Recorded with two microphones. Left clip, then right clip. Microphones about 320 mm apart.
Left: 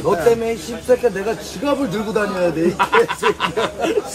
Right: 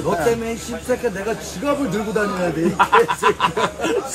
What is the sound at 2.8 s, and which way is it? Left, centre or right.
Speech, centre.